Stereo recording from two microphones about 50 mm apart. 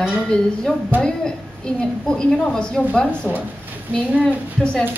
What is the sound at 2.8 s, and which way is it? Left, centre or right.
Speech, left.